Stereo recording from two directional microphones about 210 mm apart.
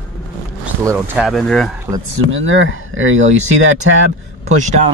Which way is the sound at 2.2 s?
65° right (ahead or behind).